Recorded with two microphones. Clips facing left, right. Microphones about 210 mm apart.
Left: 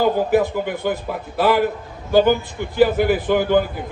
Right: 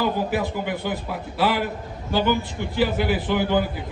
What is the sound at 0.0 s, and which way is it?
A man's voice, 50° left (ahead or behind).